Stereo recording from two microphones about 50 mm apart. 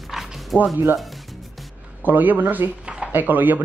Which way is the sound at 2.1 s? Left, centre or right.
Right.